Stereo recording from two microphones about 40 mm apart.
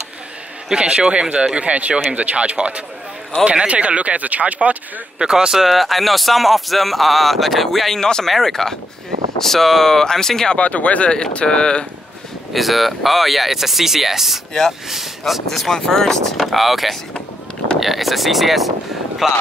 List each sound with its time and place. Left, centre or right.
0.7 s a man's voice: right
5.2 s speech: centre
5.7 s speech: centre
10.5 s speech: left
11.3 s speech: left
12.5 s speech: centre
15.6 s speech: centre
16.4 s speech: centre